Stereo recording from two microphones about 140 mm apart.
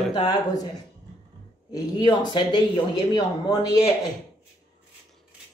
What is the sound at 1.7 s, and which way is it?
Speech, 30° left (ahead or behind).